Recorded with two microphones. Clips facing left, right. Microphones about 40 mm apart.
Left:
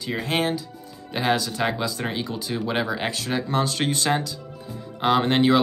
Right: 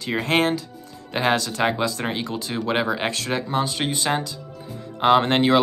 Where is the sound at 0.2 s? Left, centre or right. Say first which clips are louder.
Right 4 dB; right.